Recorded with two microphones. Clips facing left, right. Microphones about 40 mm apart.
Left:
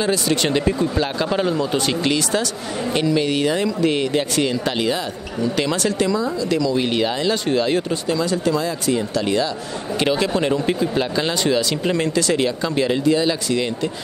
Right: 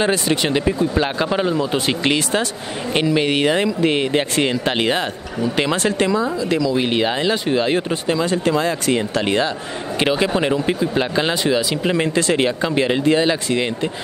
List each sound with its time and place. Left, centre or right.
0.0 s speech: right
0.4 s speech: centre
2.0 s speech: right
3.8 s speech: right
5.4 s speech: right
8.6 s speech: right
9.9 s speech: right
12.2 s speech: right